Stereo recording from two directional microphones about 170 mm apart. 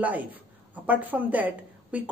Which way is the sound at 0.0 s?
10° right (ahead or behind).